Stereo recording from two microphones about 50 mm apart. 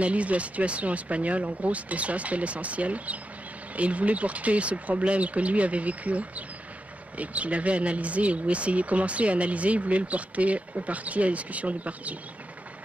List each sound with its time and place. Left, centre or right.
0.0 s speech: right